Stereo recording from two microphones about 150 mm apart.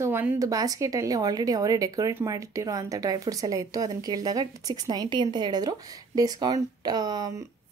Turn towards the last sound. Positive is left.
turn(degrees=-25)  # may be behind; listen again after turning